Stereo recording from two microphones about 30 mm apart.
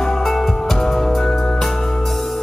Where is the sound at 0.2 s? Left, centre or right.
Centre.